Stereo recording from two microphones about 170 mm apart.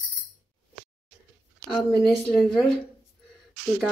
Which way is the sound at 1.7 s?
Centre (ahead or behind).